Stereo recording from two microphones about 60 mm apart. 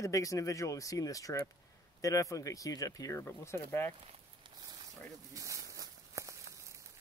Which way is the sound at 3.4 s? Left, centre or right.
Left.